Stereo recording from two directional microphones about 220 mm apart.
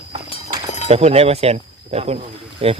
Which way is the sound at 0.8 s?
30° right (ahead or behind).